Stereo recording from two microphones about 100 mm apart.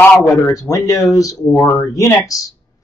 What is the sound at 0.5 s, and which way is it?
A woman's voice, 35° left (ahead or behind).